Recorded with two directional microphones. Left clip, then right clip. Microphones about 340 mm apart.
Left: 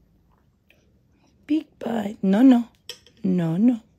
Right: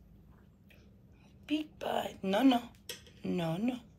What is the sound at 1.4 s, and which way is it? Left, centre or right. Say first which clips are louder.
A woman's voice: left 10 dB; left.